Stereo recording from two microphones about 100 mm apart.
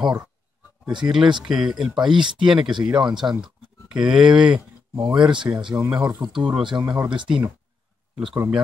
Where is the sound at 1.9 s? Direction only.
50° right (ahead or behind).